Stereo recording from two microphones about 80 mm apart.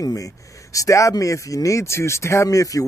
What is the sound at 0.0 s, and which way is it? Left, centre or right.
Speech, left.